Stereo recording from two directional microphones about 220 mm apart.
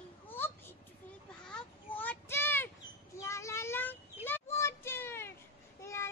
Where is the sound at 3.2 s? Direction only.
15° left (ahead or behind).